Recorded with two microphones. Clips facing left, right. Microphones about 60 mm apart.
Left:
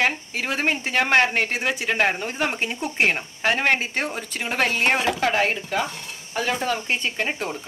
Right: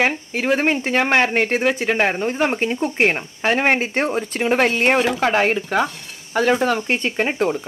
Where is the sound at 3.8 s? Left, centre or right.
Right.